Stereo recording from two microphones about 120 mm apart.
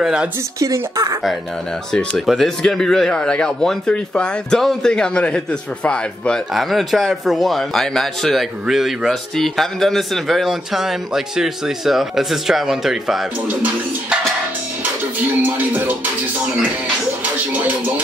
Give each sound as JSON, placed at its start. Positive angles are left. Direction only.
{"t": 0.0, "sound": "speech", "side_deg": -5}
{"t": 0.6, "sound": "speech", "side_deg": -25}
{"t": 1.9, "sound": "speech", "side_deg": 5}
{"t": 15.1, "sound": "music", "side_deg": -15}
{"t": 17.2, "sound": "music", "side_deg": -15}